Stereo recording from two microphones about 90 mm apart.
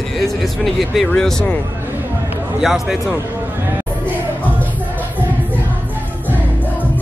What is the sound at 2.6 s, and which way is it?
Speech, 5° right (ahead or behind).